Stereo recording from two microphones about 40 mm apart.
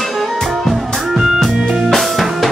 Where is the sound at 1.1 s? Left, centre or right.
Centre.